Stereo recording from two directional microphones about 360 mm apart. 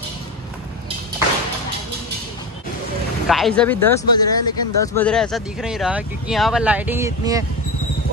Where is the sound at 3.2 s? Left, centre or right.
Centre.